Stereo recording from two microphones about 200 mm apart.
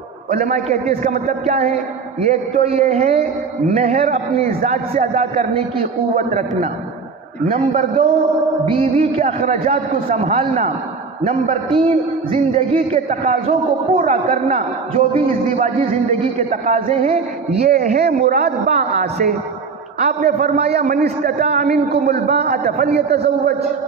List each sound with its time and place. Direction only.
0.3 s a man's voice: 35° right (ahead or behind)
4.5 s a man's voice: 45° right (ahead or behind)
7.4 s a man's voice: 35° right (ahead or behind)
11.7 s a man's voice: 25° right (ahead or behind)
17.7 s a man's voice: 45° right (ahead or behind)
22.9 s a man's voice: 50° right (ahead or behind)